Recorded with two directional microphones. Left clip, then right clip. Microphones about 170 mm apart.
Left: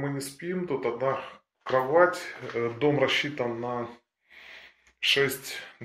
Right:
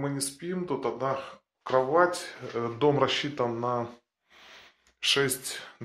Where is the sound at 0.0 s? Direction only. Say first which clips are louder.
Even; 20° right (ahead or behind).